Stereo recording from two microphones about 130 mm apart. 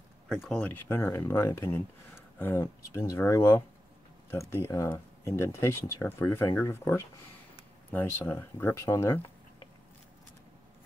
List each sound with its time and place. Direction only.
0.3 s speech: 5° left (ahead or behind); by 9.2 s 20° left (ahead or behind)